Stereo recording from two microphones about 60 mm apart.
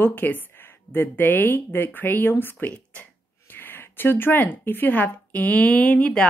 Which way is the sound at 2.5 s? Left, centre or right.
Left.